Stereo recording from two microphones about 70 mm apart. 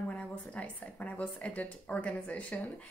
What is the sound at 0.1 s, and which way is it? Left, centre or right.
Speech, centre.